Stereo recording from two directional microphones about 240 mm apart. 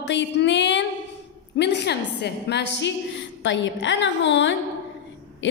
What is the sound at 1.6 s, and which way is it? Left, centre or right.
A woman's voice, left.